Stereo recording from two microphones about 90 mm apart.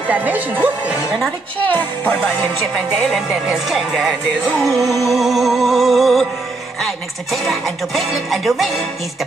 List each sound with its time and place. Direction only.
0.1 s speech: 20° right (ahead or behind)
1.6 s music: 15° left (ahead or behind)
3.3 s music: 5° right (ahead or behind)